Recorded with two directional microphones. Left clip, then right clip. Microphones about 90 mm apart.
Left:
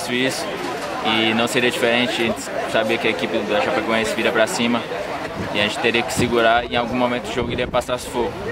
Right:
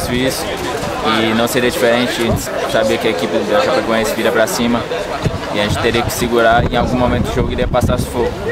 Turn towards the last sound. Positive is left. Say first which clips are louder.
# right 5 dB
turn(degrees=0)  # may be behind; listen again after turning